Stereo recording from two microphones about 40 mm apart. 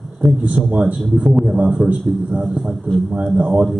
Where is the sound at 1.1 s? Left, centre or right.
Right.